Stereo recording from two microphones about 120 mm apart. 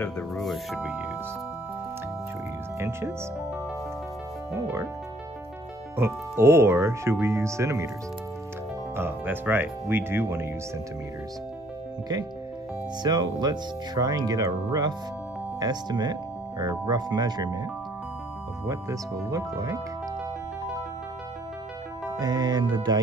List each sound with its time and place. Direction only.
0.0 s speech: centre (ahead or behind)
2.8 s speech: 20° right (ahead or behind)
4.5 s speech: 20° right (ahead or behind)
5.9 s speech: 20° right (ahead or behind)
8.9 s speech: 15° right (ahead or behind)
13.0 s speech: 35° right (ahead or behind)
18.7 s speech: 30° right (ahead or behind)
22.2 s speech: 30° right (ahead or behind)